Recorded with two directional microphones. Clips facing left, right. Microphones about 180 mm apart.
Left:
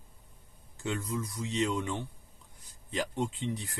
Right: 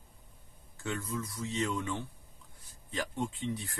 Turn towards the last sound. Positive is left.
turn(degrees=20)  # may be behind; listen again after turning